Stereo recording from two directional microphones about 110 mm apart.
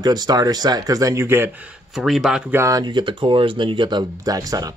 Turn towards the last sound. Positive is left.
turn(degrees=-35)  # may be behind; listen again after turning